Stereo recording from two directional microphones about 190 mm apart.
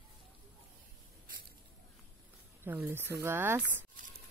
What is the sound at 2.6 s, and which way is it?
Speech, 10° right (ahead or behind).